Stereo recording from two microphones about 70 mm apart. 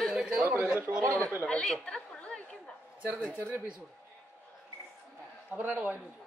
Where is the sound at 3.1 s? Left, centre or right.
Centre.